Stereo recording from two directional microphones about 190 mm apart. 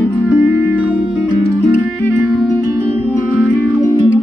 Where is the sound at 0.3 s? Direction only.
5° right (ahead or behind).